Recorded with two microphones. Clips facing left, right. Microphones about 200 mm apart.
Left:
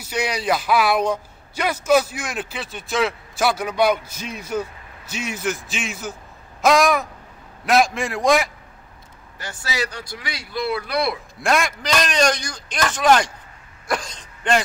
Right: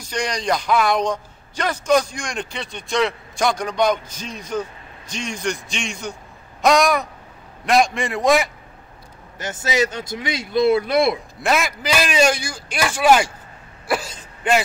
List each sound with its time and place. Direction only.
0.0 s a man's voice: 5° left (ahead or behind)
9.4 s speech: 20° right (ahead or behind)
11.4 s a man's voice: 5° right (ahead or behind)
13.8 s a sound: 5° right (ahead or behind)